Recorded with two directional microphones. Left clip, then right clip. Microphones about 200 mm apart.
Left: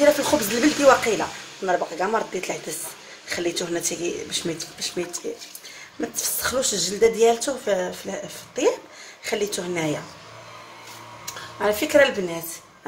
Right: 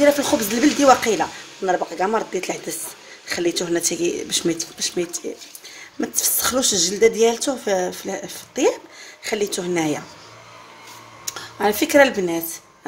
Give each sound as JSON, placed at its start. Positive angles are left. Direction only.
{"t": 0.0, "sound": "a woman's voice", "side_deg": -30}
{"t": 11.2, "sound": "speech", "side_deg": -45}